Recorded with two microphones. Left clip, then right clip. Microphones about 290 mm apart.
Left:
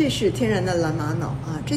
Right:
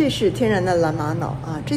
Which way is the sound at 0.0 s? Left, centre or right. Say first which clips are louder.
Right 3 dB; centre.